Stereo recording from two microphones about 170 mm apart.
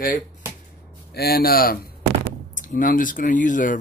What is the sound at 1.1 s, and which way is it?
Speech, 65° left (ahead or behind).